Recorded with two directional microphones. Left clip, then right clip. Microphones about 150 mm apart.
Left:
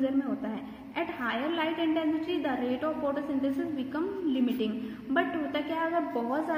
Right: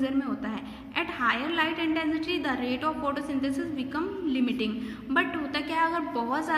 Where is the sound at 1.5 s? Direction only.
30° right (ahead or behind).